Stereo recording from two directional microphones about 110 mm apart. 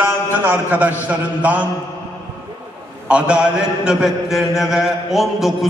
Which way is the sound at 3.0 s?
10° right (ahead or behind).